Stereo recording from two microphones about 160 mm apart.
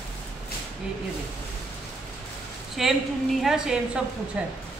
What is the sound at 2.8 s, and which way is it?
Speech, centre (ahead or behind).